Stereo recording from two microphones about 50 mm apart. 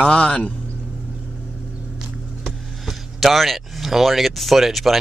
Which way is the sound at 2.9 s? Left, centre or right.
Centre.